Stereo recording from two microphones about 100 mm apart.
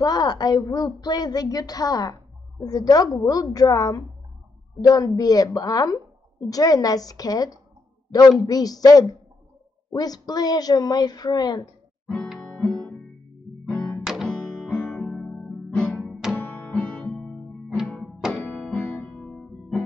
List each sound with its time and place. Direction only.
0.0 s a woman's voice: 40° left (ahead or behind)
12.4 s guitar: 10° left (ahead or behind)
13.7 s music: 10° left (ahead or behind)
14.0 s music: centre (ahead or behind)
14.3 s music: 10° left (ahead or behind)
16.3 s music: 15° left (ahead or behind)
18.6 s music: 5° left (ahead or behind)
18.9 s music: 15° left (ahead or behind)